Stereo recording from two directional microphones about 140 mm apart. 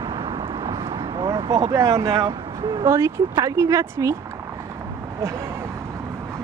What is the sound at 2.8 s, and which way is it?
Speech, 20° right (ahead or behind).